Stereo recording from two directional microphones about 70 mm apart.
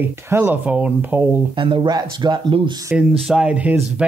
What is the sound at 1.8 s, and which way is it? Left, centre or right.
Speech, right.